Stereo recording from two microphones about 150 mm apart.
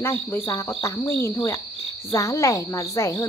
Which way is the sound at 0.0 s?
15° left (ahead or behind).